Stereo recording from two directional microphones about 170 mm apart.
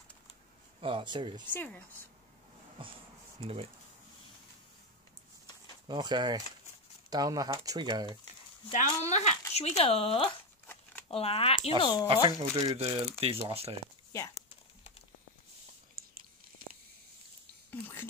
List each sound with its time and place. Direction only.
0.7 s speech: 30° right (ahead or behind)
1.5 s speech: 10° left (ahead or behind)
5.9 s speech: 25° right (ahead or behind)
8.7 s speech: 40° left (ahead or behind)
12.3 s speech: 20° right (ahead or behind)
13.2 s speech: 35° right (ahead or behind)
16.0 s chewing: 60° right (ahead or behind)
17.6 s whispering: 10° left (ahead or behind)